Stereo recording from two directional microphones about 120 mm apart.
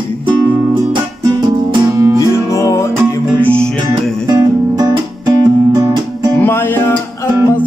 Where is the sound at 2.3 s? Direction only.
25° left (ahead or behind).